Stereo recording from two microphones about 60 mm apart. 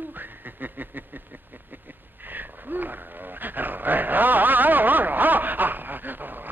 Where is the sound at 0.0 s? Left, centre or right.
Right.